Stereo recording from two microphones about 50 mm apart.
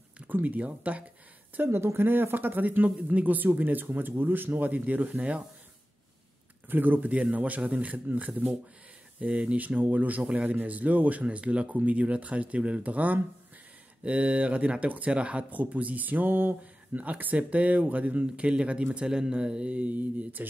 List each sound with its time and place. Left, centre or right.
0.3 s speech: right
1.6 s speech: right
6.7 s speech: right
16.9 s speech: right